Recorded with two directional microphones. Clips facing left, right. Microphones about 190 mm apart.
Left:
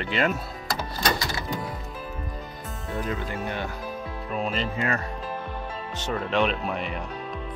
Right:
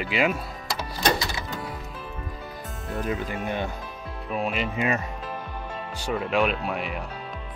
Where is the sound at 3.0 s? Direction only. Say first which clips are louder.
Right 3 dB; 15° right (ahead or behind).